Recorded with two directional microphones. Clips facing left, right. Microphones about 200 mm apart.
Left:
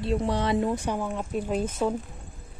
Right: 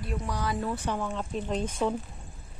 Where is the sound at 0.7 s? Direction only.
10° left (ahead or behind).